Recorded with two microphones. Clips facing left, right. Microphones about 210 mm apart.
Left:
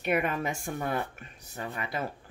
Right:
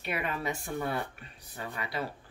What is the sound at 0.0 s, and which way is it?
Speech, 50° left (ahead or behind).